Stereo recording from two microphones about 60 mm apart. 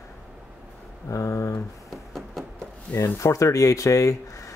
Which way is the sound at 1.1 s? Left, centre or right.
Left.